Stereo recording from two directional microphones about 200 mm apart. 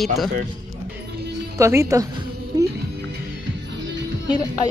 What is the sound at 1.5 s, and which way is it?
Speech, 15° right (ahead or behind).